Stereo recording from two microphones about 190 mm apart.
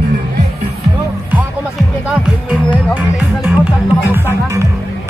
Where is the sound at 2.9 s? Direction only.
10° right (ahead or behind).